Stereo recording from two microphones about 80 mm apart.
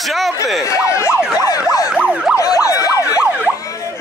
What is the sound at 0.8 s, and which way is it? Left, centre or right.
Emergency vehicle, left.